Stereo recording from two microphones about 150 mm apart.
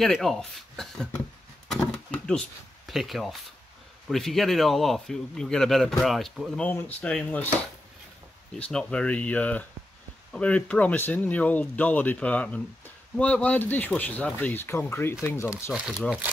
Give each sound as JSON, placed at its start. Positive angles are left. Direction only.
{"t": 0.0, "sound": "speech", "side_deg": 0}
{"t": 1.7, "sound": "a sound", "side_deg": 5}
{"t": 2.9, "sound": "a man's voice", "side_deg": 0}
{"t": 8.5, "sound": "speech", "side_deg": 5}